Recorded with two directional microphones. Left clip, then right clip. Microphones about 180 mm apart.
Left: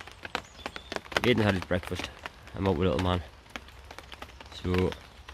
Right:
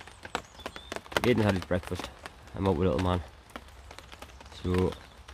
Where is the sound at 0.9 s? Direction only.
35° left (ahead or behind).